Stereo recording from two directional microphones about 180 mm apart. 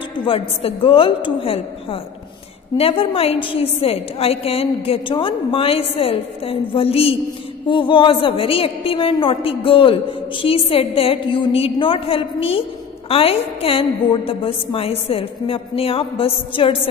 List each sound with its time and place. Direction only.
0.1 s a woman's voice: 30° left (ahead or behind)